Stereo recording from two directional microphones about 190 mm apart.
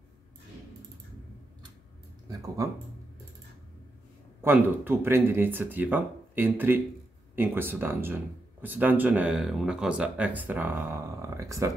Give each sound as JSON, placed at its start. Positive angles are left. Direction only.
{"t": 2.2, "sound": "speech", "side_deg": -20}
{"t": 4.4, "sound": "speech", "side_deg": -10}